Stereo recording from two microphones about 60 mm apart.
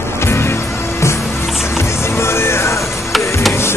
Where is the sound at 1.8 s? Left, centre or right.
Left.